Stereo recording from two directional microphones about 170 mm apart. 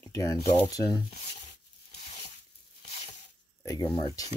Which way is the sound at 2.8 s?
40° left (ahead or behind).